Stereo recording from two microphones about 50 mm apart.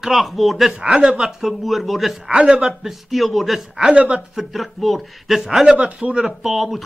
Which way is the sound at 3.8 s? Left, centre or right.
Centre.